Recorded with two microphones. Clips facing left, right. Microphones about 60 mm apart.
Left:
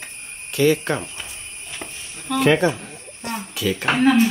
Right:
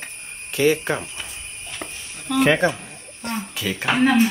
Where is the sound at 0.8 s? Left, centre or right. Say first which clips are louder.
Left 1 dB; centre.